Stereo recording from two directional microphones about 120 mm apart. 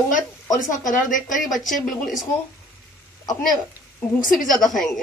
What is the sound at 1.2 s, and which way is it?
A woman's voice, centre (ahead or behind).